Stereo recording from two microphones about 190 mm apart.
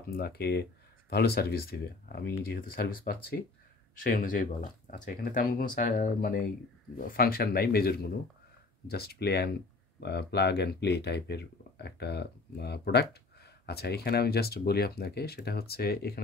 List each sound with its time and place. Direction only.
0.1 s speech: 55° left (ahead or behind)